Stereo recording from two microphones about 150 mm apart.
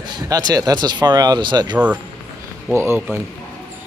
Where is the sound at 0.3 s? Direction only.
25° right (ahead or behind).